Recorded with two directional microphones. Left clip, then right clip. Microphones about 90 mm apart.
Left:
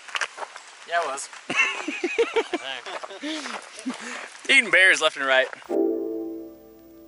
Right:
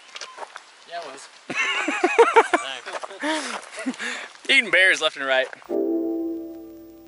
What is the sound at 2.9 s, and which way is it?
Speech, 40° right (ahead or behind).